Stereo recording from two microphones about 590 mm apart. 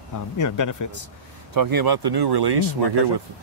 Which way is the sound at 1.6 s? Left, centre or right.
Right.